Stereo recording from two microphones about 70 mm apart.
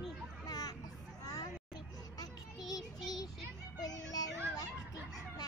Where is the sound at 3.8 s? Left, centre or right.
Left.